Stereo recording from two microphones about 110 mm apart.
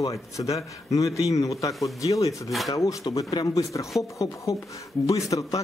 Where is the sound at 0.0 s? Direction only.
30° left (ahead or behind).